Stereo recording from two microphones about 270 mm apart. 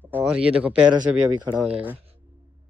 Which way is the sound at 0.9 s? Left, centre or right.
Centre.